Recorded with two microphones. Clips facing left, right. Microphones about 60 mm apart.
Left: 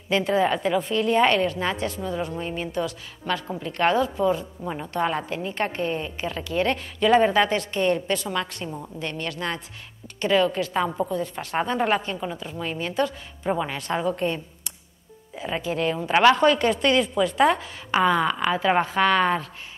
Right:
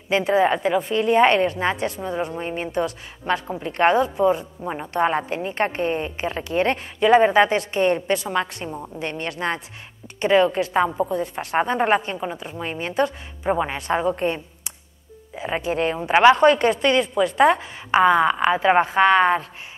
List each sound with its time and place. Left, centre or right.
0.1 s a woman's voice: centre
1.8 s a woman's voice: centre
2.3 s a woman's voice: right
7.0 s a woman's voice: centre
10.8 s a woman's voice: centre
11.1 s a woman's voice: right
16.7 s speech: centre
17.5 s a woman's voice: centre